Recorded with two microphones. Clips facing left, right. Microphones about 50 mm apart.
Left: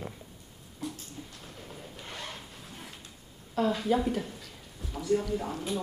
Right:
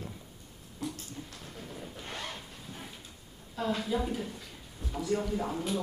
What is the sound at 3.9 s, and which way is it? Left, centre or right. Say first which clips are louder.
Speech: left 6 dB; left.